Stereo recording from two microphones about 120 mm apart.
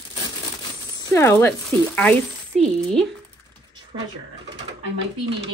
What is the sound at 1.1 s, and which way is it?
Speech, 20° left (ahead or behind).